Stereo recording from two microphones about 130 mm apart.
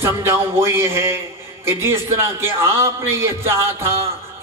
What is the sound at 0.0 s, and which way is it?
A man's voice, 20° right (ahead or behind).